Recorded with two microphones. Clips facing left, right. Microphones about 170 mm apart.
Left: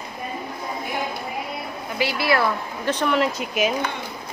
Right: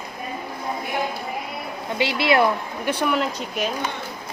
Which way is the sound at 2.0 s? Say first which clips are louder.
Right 2 dB; 20° right (ahead or behind).